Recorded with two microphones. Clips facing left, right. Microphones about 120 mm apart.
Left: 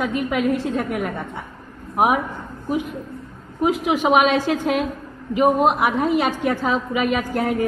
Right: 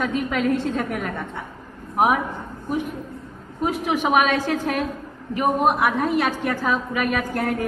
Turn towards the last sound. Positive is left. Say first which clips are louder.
# left 2 dB
turn(degrees=15)  # may be behind; listen again after turning